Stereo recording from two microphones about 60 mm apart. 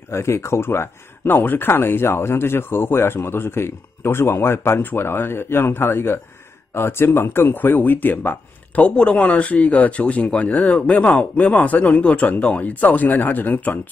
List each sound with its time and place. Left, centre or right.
0.1 s speech: left